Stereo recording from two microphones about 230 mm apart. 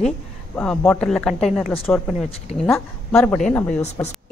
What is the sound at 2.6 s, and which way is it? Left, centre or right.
A woman's voice, centre.